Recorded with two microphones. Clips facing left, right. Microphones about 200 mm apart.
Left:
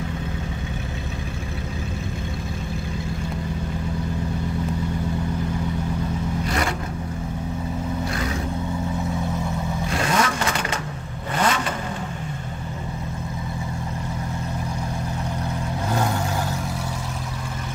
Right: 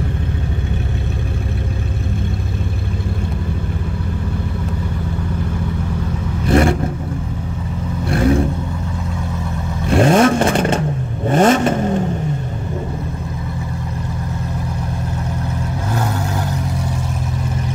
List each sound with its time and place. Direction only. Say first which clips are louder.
6.5 s vehicle: right 15 dB; 55° right (ahead or behind)
8.1 s vehicle: right 12 dB; 50° right (ahead or behind)
9.8 s vehicle: right 12 dB; 50° right (ahead or behind)